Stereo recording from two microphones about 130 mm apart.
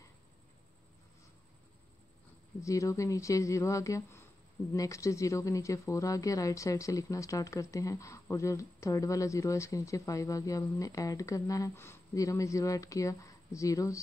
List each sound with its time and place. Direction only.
2.6 s speech: 25° left (ahead or behind)